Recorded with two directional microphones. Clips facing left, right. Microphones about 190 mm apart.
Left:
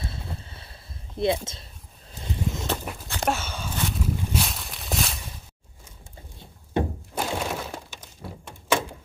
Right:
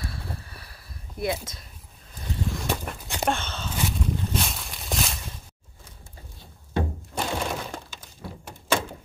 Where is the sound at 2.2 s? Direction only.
20° left (ahead or behind).